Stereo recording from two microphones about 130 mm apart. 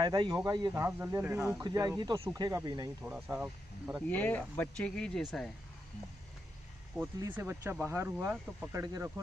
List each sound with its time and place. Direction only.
0.0 s speech: 35° right (ahead or behind)
0.7 s speech: 20° right (ahead or behind)
1.6 s speech: 30° right (ahead or behind)
3.1 s speech: 10° right (ahead or behind)
4.1 s speech: 10° left (ahead or behind)
7.0 s speech: 10° right (ahead or behind)